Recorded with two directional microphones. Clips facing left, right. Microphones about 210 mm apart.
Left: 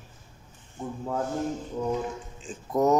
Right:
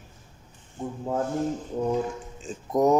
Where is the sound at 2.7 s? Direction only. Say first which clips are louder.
Right 2 dB; 15° right (ahead or behind).